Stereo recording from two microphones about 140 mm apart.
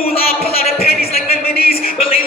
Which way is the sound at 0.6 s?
90° left.